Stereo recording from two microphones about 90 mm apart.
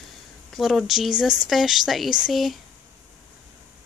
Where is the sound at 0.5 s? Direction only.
Centre (ahead or behind).